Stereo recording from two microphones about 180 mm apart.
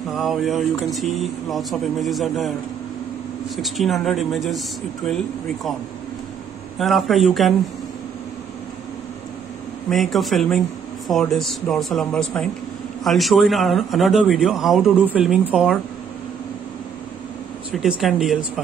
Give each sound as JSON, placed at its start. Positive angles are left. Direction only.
{"t": 0.1, "sound": "speech", "side_deg": 0}
{"t": 3.5, "sound": "speech", "side_deg": 0}
{"t": 6.8, "sound": "speech", "side_deg": 0}
{"t": 9.8, "sound": "speech", "side_deg": 0}
{"t": 17.7, "sound": "speech", "side_deg": 0}